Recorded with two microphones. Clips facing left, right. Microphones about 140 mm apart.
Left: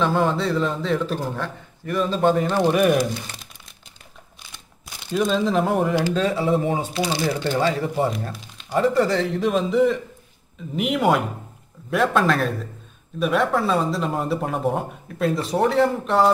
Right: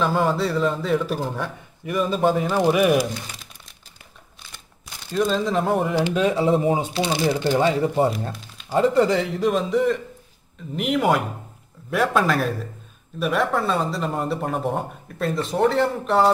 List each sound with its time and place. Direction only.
0.0 s a man's voice: 5° right (ahead or behind)
5.1 s a man's voice: centre (ahead or behind)
6.0 s speech: 15° right (ahead or behind)
6.7 s speech: 30° right (ahead or behind)
7.1 s speech: 15° right (ahead or behind)
9.1 s a man's voice: 5° right (ahead or behind)